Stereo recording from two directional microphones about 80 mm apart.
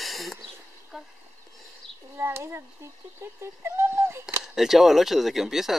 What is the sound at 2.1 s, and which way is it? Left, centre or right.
Speech, right.